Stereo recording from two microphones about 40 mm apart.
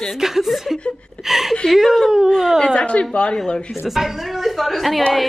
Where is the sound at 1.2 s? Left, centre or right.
Centre.